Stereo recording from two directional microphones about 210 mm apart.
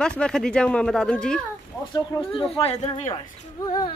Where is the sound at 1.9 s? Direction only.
25° left (ahead or behind).